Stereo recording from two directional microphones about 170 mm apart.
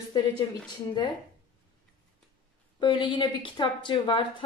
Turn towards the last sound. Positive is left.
turn(degrees=30)  # may be behind; listen again after turning